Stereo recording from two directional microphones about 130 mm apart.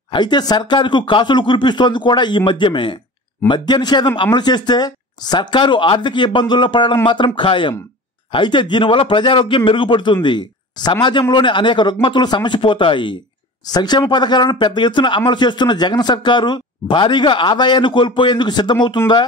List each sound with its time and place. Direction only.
0.1 s speech: 35° left (ahead or behind)